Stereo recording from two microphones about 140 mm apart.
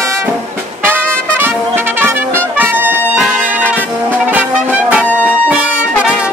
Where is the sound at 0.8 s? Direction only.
15° right (ahead or behind).